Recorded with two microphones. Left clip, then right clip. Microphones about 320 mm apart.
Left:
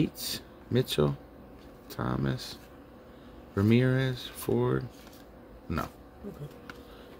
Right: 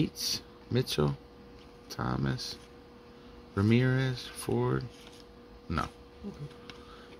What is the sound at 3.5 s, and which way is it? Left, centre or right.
Speech, centre.